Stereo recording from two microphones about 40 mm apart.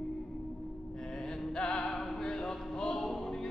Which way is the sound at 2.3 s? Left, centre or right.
Left.